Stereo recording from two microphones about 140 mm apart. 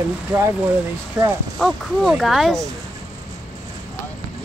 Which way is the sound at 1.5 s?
Centre (ahead or behind).